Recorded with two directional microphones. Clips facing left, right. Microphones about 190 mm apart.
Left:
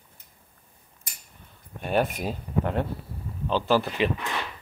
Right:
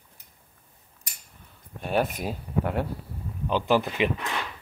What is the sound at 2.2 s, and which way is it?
Speech, 10° right (ahead or behind).